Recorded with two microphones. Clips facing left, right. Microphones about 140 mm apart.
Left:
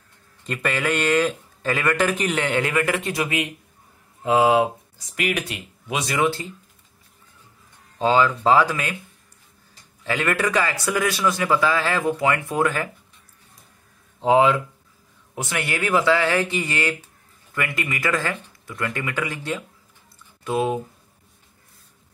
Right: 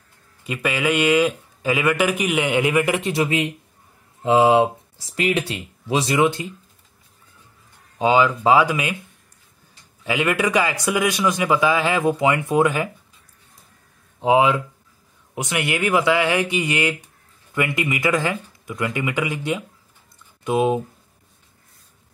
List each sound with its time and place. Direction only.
0.4 s a man's voice: 10° right (ahead or behind)
3.1 s speech: 25° right (ahead or behind)
8.0 s a man's voice: 15° right (ahead or behind)
10.0 s a man's voice: 15° right (ahead or behind)
14.2 s a man's voice: 10° right (ahead or behind)